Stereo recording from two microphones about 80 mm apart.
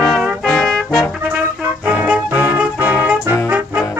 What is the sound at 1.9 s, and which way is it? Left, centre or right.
Music, centre.